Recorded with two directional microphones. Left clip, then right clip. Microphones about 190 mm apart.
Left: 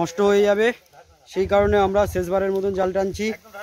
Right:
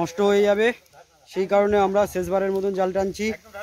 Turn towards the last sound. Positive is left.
turn(degrees=10)  # may be behind; listen again after turning